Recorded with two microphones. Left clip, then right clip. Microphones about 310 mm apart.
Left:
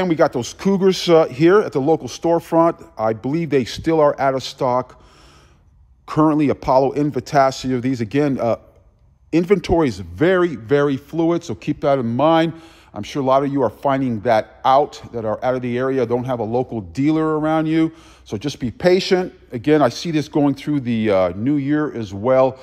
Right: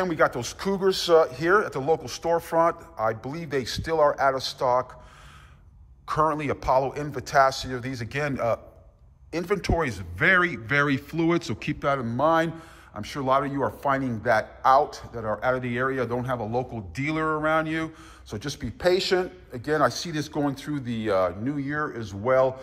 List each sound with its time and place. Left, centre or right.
0.1 s speech: centre
6.0 s speech: centre